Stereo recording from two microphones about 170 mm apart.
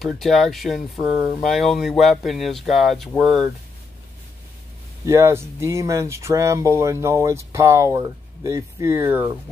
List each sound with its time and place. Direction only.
0.0 s speech: centre (ahead or behind)
5.0 s speech: 15° right (ahead or behind)